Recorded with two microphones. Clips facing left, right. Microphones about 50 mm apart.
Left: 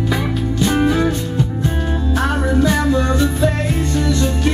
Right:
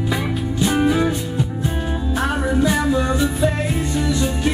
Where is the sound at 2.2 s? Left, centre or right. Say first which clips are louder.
Left 2 dB; centre.